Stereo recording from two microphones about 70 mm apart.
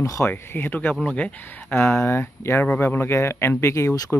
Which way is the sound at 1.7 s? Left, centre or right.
Left.